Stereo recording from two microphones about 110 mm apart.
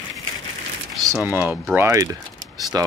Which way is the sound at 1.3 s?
15° right (ahead or behind).